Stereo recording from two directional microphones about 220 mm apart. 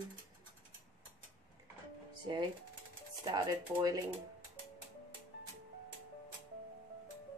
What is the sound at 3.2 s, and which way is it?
Speech, 20° right (ahead or behind).